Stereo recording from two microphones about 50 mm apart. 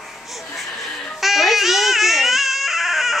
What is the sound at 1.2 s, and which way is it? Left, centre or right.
Babbling, centre.